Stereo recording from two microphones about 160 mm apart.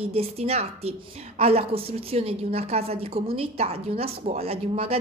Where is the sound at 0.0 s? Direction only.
40° right (ahead or behind).